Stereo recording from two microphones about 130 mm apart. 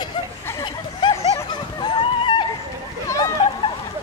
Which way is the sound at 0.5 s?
20° left (ahead or behind).